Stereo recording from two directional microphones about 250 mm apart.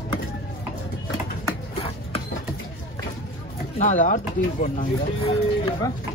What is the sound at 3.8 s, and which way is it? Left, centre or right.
Speech, left.